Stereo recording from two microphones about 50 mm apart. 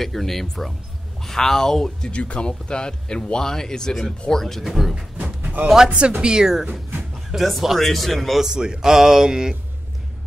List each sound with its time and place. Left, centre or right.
0.0 s a man's voice: centre
2.0 s a man's voice: left; by 5.0 s centre
5.1 s a sound: right
5.9 s speech: right
7.4 s a man's voice: centre
8.5 s speech: centre